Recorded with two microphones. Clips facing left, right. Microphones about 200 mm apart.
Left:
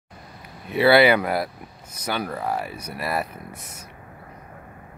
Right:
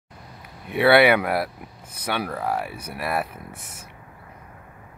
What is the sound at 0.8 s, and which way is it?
Speech, centre (ahead or behind).